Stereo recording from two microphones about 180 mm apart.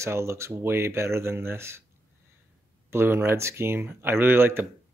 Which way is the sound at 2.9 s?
15° right (ahead or behind).